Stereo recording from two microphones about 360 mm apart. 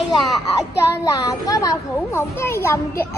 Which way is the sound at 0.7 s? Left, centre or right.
Centre.